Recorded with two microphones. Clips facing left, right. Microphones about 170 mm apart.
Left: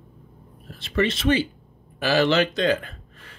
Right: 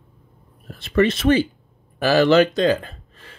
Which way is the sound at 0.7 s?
50° right (ahead or behind).